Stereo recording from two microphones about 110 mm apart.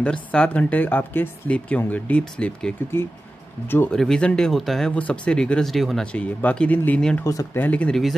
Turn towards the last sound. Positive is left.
turn(degrees=10)  # may be behind; listen again after turning